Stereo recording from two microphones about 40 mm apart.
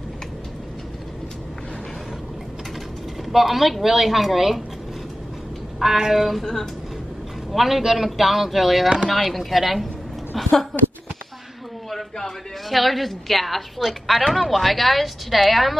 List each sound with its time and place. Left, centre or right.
3.3 s a woman's voice: centre
5.8 s a woman's voice: centre
6.4 s speech: centre
7.5 s a woman's voice: centre
8.8 s speech: centre
9.1 s a woman's voice: centre
11.9 s a woman's voice: centre